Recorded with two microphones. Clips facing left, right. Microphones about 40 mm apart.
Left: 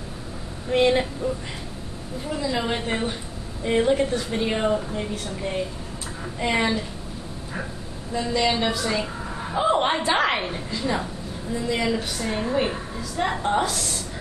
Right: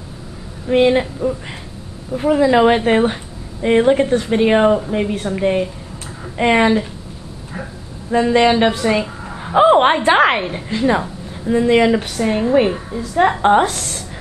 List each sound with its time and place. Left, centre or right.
0.7 s speech: right
2.1 s a woman's voice: right
3.6 s a woman's voice: right
8.1 s a woman's voice: right
9.5 s a sound: right
10.0 s a woman's voice: right
10.3 s speech: right
10.7 s a woman's voice: right
12.6 s a woman's voice: centre
13.4 s a woman's voice: right